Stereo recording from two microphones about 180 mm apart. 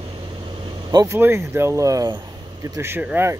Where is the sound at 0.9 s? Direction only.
20° right (ahead or behind).